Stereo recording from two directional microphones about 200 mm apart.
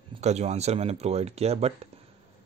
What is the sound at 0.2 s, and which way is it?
Speech, 35° right (ahead or behind).